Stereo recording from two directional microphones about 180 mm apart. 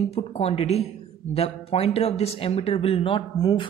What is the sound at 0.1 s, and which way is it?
Speech, 35° left (ahead or behind).